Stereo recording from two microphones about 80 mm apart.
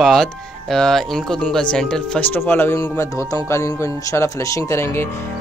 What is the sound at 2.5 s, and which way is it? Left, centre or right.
Speech, left.